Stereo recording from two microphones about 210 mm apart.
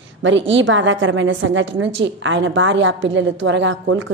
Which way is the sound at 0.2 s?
60° right (ahead or behind).